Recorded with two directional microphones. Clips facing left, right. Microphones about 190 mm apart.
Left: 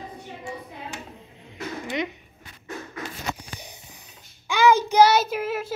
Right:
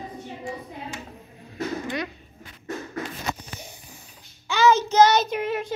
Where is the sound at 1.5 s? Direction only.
20° left (ahead or behind).